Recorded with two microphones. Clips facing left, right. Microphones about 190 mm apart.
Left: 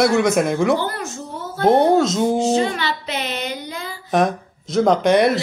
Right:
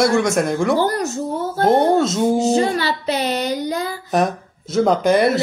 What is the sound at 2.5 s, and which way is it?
Child singing, 40° right (ahead or behind).